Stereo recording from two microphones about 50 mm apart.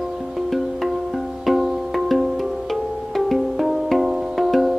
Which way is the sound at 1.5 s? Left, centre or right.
Centre.